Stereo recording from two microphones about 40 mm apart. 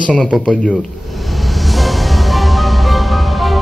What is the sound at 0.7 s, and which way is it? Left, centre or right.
Music, centre.